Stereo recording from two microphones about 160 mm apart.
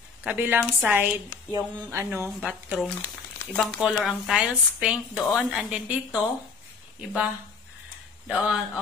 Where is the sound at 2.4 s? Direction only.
Centre (ahead or behind).